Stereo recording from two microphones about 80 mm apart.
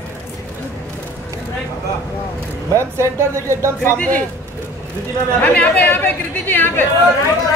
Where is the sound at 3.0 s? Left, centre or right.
Right.